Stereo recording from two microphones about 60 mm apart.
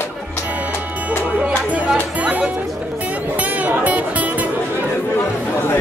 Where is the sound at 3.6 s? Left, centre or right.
Right.